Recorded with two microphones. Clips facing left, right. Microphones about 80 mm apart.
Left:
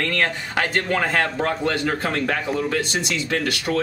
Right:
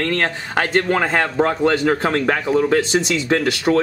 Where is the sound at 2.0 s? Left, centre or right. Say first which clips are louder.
Right 5 dB; right.